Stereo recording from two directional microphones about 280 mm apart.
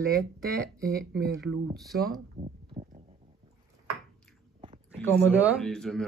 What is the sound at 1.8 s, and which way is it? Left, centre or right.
Speech, centre.